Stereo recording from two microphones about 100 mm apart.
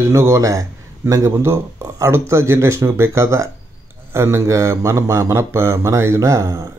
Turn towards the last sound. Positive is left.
turn(degrees=-35)  # may be behind; listen again after turning